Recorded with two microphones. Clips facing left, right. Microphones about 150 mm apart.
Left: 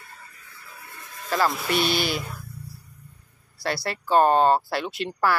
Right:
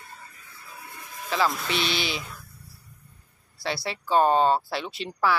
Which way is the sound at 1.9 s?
50° left (ahead or behind).